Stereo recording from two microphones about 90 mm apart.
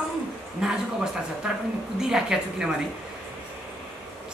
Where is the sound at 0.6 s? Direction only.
5° right (ahead or behind).